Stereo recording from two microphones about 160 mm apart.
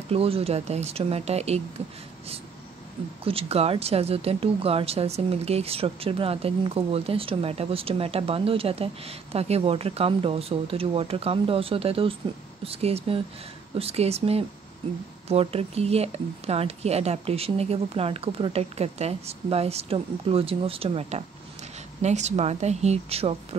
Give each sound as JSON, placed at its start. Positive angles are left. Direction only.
{"t": 0.1, "sound": "speech", "side_deg": -35}
{"t": 3.3, "sound": "speech", "side_deg": -35}